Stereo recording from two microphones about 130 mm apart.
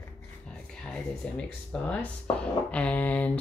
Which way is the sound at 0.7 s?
5° left (ahead or behind).